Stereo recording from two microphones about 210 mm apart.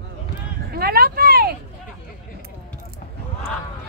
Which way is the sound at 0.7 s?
45° right (ahead or behind).